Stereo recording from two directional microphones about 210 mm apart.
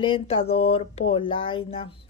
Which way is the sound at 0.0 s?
25° left (ahead or behind).